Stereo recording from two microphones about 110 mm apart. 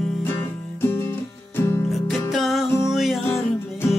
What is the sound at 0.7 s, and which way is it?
Music, 20° left (ahead or behind).